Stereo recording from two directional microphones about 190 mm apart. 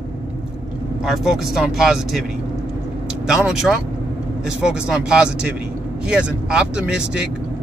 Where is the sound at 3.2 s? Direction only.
5° right (ahead or behind).